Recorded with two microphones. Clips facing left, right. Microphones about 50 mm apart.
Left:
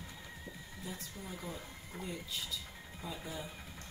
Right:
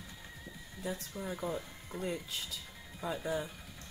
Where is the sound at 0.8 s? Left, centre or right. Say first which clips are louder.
Right 7 dB; right.